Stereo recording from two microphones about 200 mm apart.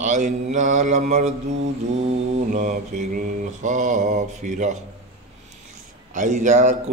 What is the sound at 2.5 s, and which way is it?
Mantra, 40° right (ahead or behind).